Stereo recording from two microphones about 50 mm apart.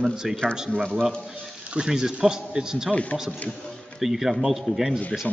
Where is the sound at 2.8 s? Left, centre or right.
Left.